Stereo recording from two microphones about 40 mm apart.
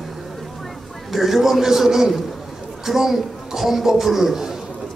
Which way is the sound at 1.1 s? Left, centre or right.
Centre.